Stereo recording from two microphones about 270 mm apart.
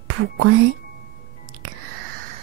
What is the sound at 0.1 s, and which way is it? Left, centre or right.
Speech, right.